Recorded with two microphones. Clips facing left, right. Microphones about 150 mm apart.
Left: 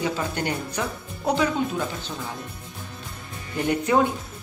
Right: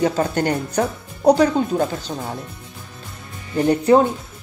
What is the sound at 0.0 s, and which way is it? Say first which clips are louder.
Speech: right 7 dB; 45° right (ahead or behind).